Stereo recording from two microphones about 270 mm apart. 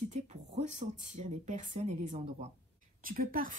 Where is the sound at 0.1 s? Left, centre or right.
Right.